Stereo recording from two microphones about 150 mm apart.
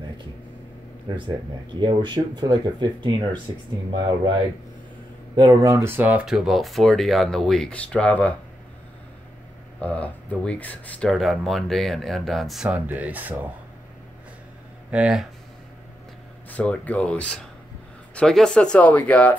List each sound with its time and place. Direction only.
1.0 s speech: 30° right (ahead or behind)
5.3 s speech: 25° right (ahead or behind); by 8.4 s 10° left (ahead or behind)
9.8 s speech: 10° left (ahead or behind); by 13.5 s 10° right (ahead or behind)
14.9 s speech: 5° right (ahead or behind)
16.4 s speech: 10° left (ahead or behind)